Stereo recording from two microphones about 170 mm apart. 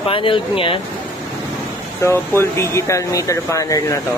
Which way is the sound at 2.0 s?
15° left (ahead or behind).